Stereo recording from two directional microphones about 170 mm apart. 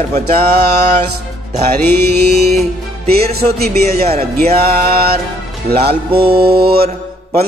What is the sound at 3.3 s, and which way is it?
Music, 65° right (ahead or behind).